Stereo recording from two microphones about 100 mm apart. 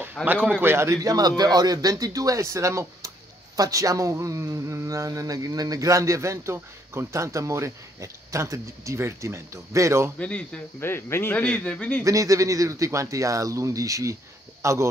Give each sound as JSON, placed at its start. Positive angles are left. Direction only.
{"t": 0.2, "sound": "speech", "side_deg": -15}
{"t": 10.1, "sound": "speech", "side_deg": 10}
{"t": 10.8, "sound": "speech", "side_deg": 25}
{"t": 12.0, "sound": "speech", "side_deg": -35}